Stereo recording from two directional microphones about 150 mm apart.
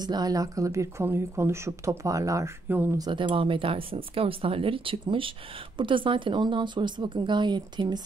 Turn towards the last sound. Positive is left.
turn(degrees=-30)  # may be behind; listen again after turning